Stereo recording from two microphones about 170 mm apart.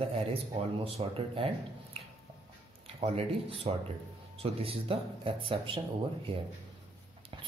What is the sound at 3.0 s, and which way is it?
Speech, 35° right (ahead or behind).